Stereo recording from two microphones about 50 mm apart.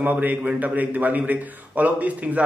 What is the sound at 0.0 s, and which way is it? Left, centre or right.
A man's voice, right.